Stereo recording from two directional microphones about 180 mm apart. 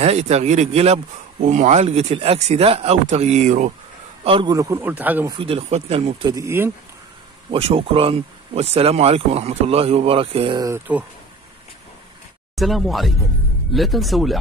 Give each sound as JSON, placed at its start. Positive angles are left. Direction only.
{"t": 0.0, "sound": "speech", "side_deg": -35}
{"t": 4.2, "sound": "a man's voice", "side_deg": -30}
{"t": 4.6, "sound": "a man's voice", "side_deg": -15}
{"t": 5.4, "sound": "speech", "side_deg": -35}
{"t": 6.4, "sound": "a man's voice", "side_deg": -15}
{"t": 7.5, "sound": "speech", "side_deg": -30}
{"t": 10.7, "sound": "a man's voice", "side_deg": -10}
{"t": 12.5, "sound": "speech", "side_deg": 0}